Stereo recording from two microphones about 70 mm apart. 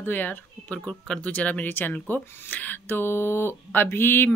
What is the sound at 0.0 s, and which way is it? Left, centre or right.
Speech, left.